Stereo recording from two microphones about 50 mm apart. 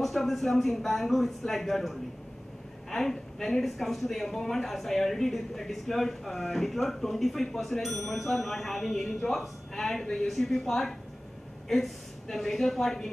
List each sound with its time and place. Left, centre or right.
0.0 s a woman's voice: centre